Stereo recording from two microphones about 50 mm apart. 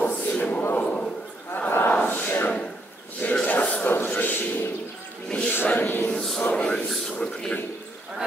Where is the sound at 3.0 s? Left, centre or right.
Left.